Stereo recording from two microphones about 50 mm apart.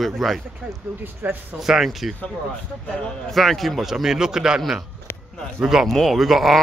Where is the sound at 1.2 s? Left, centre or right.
Right.